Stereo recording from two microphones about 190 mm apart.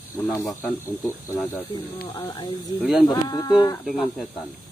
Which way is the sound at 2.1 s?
20° left (ahead or behind).